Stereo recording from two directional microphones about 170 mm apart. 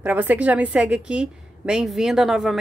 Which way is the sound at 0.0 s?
10° right (ahead or behind).